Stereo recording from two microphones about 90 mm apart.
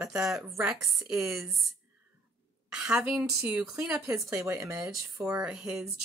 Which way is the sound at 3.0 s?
10° right (ahead or behind).